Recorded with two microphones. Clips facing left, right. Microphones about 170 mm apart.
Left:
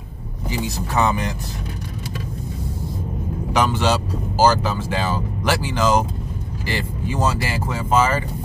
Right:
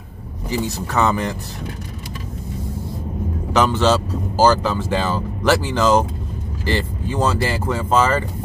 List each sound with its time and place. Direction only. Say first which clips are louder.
0.5 s speech: right 2 dB; 15° left (ahead or behind)
3.5 s speech: right 3 dB; 10° left (ahead or behind)